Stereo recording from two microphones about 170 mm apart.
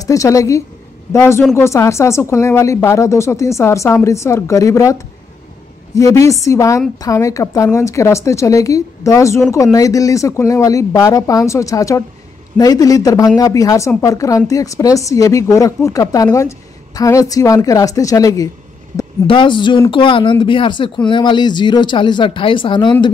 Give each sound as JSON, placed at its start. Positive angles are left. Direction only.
{"t": 0.0, "sound": "a woman's voice", "side_deg": 20}